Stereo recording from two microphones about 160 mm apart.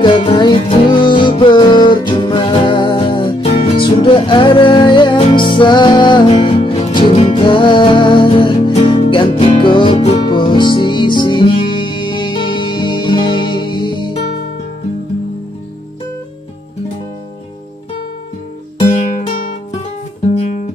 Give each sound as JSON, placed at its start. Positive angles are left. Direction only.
{"t": 0.0, "sound": "music", "side_deg": 30}